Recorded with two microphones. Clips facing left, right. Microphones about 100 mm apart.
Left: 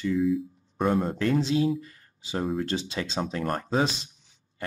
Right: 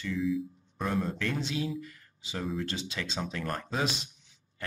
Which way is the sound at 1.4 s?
35° left (ahead or behind).